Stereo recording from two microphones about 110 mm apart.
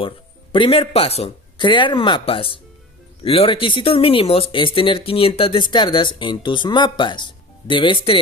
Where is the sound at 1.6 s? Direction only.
45° left (ahead or behind).